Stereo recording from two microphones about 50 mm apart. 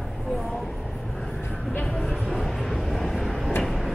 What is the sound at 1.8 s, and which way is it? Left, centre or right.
Vehicle, centre.